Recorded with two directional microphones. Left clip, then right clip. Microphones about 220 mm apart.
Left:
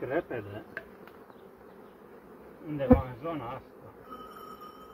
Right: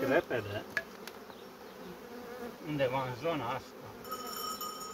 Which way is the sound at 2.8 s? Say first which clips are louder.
Left 6 dB; 25° right (ahead or behind).